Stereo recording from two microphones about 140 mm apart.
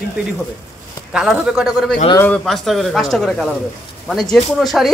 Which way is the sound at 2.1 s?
10° left (ahead or behind).